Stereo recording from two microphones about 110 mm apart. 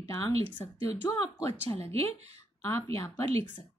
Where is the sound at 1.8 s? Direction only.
75° right (ahead or behind).